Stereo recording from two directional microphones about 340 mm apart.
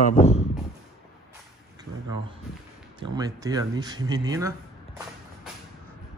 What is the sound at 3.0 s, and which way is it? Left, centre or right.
A man's voice, centre.